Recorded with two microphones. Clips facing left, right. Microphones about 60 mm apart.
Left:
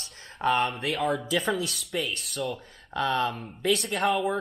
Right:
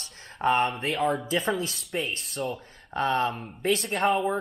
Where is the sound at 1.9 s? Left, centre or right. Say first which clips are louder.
Even; right.